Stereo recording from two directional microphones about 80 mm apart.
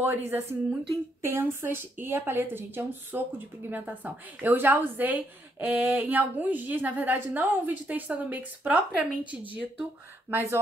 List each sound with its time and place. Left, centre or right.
0.0 s a woman's voice: right
10.3 s speech: right